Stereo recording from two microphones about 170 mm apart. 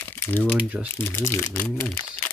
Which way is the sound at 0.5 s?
10° right (ahead or behind).